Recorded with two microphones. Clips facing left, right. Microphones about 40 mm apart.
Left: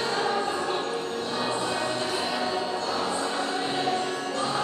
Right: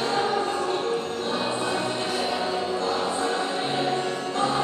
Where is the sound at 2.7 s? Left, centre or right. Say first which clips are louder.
Right 2 dB; right.